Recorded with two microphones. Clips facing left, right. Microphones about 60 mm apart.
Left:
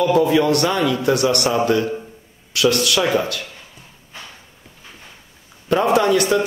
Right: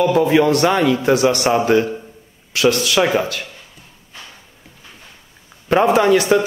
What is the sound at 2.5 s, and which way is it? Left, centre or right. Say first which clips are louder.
Speech: right 1 dB; right.